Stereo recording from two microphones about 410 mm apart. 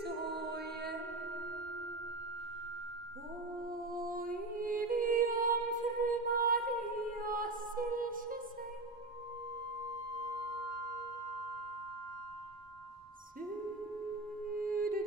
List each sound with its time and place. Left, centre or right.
0.0 s music: right
3.6 s music: right
14.6 s music: right